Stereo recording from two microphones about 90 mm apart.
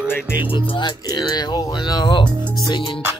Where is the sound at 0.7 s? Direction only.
55° left (ahead or behind).